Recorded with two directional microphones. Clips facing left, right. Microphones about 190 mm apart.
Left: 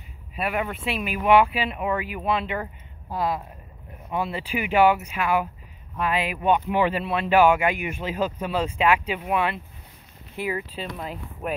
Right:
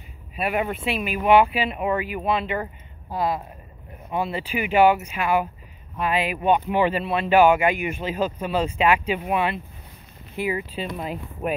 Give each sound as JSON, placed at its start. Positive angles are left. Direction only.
{"t": 0.4, "sound": "speech", "side_deg": -20}
{"t": 0.8, "sound": "speech", "side_deg": 0}